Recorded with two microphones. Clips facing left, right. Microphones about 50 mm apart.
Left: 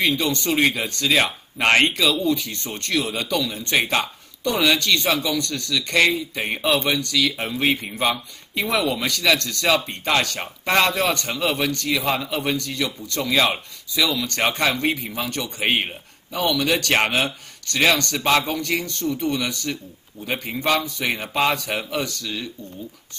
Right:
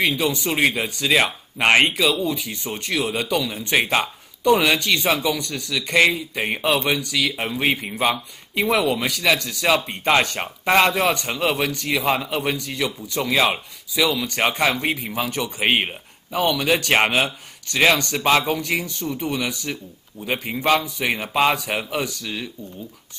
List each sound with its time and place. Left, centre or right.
0.0 s speech: centre
10.0 s speech: right